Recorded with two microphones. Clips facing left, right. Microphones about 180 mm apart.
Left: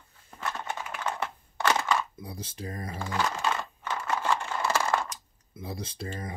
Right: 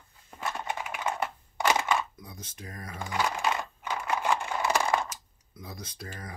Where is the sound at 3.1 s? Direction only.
15° right (ahead or behind).